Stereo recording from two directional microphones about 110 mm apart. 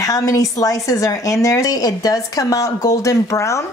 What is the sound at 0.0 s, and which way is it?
Speech, 30° left (ahead or behind).